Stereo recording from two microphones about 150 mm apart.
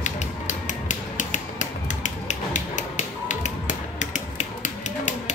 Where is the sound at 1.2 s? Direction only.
55° left (ahead or behind).